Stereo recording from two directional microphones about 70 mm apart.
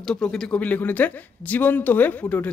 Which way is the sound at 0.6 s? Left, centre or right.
Left.